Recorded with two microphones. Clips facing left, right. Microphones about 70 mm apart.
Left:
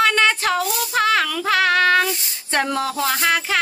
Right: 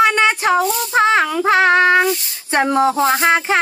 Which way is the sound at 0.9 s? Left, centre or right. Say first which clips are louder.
Right 4 dB; right.